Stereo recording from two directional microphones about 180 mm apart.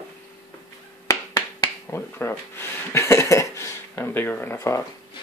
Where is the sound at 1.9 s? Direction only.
15° left (ahead or behind).